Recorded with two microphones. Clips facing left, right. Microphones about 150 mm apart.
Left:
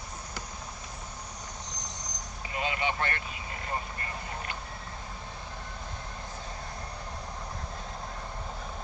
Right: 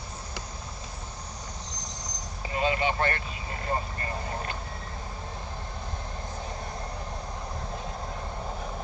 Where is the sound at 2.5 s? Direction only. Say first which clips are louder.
Right 5 dB; 35° right (ahead or behind).